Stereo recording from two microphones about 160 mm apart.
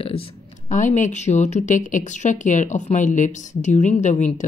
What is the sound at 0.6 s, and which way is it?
Speech, 50° left (ahead or behind).